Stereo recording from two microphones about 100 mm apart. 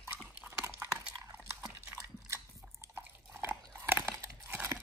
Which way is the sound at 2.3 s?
25° right (ahead or behind).